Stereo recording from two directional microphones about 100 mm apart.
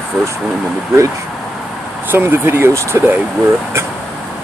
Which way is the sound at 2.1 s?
25° right (ahead or behind).